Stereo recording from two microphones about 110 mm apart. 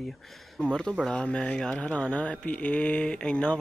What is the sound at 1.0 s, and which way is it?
A man's voice, 10° left (ahead or behind).